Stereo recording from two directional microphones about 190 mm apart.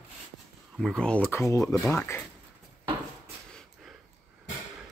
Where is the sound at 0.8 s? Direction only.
5° left (ahead or behind).